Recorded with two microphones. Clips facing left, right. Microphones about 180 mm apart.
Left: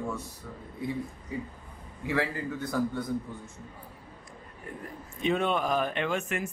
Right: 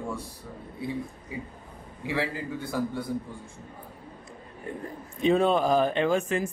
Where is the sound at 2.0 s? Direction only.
15° right (ahead or behind).